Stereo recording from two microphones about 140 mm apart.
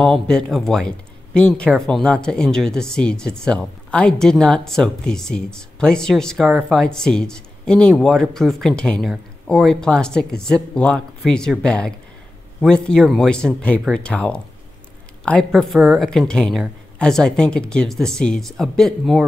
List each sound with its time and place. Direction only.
0.0 s speech: 5° left (ahead or behind)